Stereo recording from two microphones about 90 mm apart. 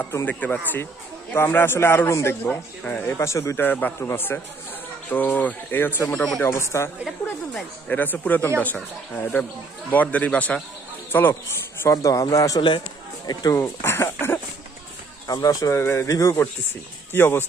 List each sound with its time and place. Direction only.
0.2 s speech: 20° left (ahead or behind)
2.4 s speech: 20° left (ahead or behind)
3.6 s speech: 20° left (ahead or behind)
6.1 s speech: 5° left (ahead or behind)
6.4 s speech: 30° left (ahead or behind)
7.9 s a man's voice: 20° left (ahead or behind)
11.9 s speech: 40° left (ahead or behind)
13.6 s speech: 30° left (ahead or behind)
15.2 s speech: 40° left (ahead or behind)
15.7 s speech: 25° left (ahead or behind)
16.1 s speech: 40° left (ahead or behind)
17.1 s speech: 25° left (ahead or behind)